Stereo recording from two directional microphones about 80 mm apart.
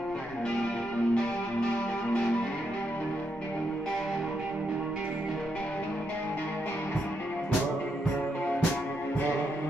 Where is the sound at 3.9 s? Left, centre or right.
Centre.